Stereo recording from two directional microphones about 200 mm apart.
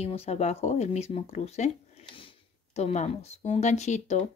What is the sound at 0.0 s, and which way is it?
Speech, 30° left (ahead or behind).